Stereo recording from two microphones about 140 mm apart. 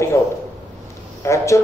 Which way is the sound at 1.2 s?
20° left (ahead or behind).